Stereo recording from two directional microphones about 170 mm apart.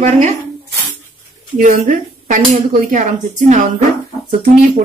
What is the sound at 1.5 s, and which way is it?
A woman's voice, 50° right (ahead or behind).